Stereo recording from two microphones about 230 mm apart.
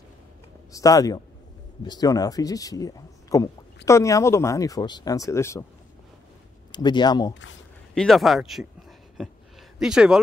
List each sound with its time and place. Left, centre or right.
0.7 s speech: centre
6.7 s speech: centre
7.9 s speech: centre
9.8 s speech: centre